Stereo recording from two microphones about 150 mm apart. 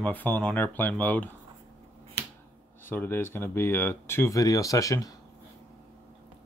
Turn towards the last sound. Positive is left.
turn(degrees=20)  # may be behind; listen again after turning